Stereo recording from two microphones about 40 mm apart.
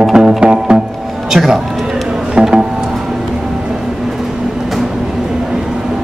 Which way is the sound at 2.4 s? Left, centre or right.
Centre.